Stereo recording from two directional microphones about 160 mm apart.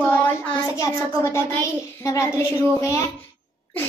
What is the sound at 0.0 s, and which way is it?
A child's voice, 10° left (ahead or behind).